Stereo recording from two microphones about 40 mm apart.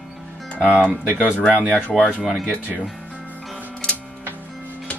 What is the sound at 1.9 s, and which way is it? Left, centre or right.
Speech, centre.